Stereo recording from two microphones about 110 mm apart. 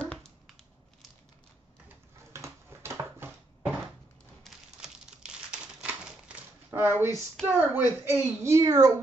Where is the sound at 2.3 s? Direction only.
25° right (ahead or behind).